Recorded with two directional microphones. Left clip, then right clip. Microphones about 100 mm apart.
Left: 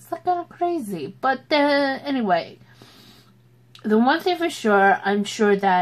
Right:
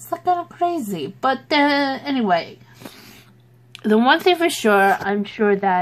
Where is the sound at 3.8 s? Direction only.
35° right (ahead or behind).